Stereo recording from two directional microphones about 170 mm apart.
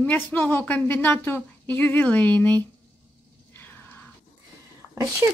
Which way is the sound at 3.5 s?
10° left (ahead or behind).